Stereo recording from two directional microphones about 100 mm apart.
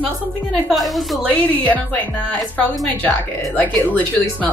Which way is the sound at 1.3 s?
15° left (ahead or behind).